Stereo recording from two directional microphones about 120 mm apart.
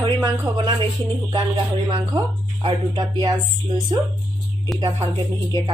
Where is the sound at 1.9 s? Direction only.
40° right (ahead or behind).